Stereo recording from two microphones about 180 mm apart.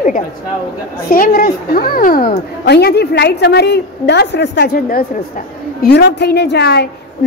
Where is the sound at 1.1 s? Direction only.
50° left (ahead or behind).